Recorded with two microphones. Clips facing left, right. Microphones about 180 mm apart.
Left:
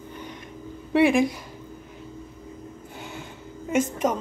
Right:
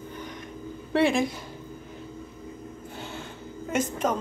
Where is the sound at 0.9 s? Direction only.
15° left (ahead or behind).